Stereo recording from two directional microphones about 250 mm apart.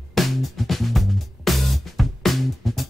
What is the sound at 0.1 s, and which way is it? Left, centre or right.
Music, centre.